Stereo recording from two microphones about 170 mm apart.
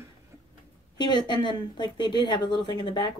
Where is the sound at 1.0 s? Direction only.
25° left (ahead or behind).